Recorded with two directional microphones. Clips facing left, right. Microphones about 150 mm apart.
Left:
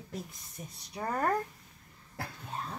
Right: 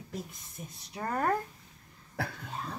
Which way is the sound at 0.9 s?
Centre (ahead or behind).